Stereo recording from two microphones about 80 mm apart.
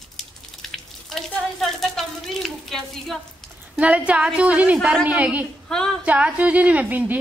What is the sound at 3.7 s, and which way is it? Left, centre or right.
A woman's voice, centre.